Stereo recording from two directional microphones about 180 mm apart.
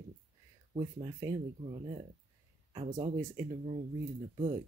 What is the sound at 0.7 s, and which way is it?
Speech, 25° right (ahead or behind).